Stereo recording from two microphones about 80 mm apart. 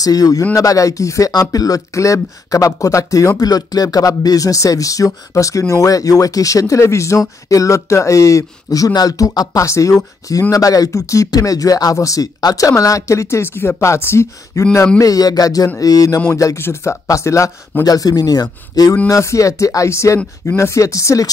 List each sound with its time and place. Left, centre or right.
0.0 s speech: left
15.0 s speech: left
16.5 s speech: left
17.8 s speech: left
19.0 s speech: left